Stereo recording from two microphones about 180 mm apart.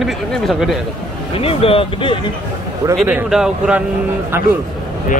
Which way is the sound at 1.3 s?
30° left (ahead or behind).